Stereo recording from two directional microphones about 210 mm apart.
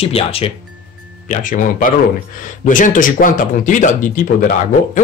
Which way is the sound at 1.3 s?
40° left (ahead or behind).